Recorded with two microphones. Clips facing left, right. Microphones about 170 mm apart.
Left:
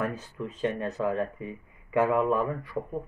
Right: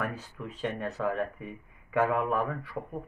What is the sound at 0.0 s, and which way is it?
Speech, 20° left (ahead or behind).